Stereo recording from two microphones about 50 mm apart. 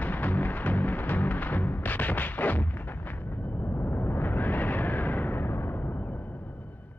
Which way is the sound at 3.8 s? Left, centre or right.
Left.